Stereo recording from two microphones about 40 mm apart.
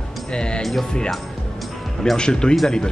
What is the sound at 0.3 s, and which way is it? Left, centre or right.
Music, left.